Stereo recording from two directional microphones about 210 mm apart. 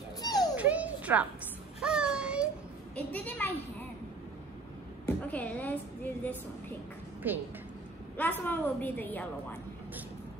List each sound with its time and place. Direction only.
0.2 s a sound: 20° left (ahead or behind)
0.6 s a sound: 5° right (ahead or behind)
3.1 s a woman's voice: 5° left (ahead or behind)
5.0 s speech: 5° left (ahead or behind)
7.2 s a woman's voice: 10° right (ahead or behind)
8.2 s a woman's voice: 10° left (ahead or behind)